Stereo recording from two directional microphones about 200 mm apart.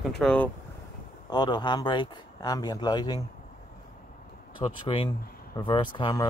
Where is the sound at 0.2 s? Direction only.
5° left (ahead or behind).